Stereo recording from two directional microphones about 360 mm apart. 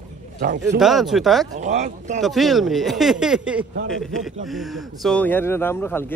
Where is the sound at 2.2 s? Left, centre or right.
Centre.